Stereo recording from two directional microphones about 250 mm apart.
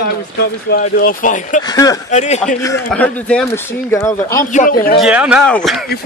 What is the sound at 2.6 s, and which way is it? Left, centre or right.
Speech, centre.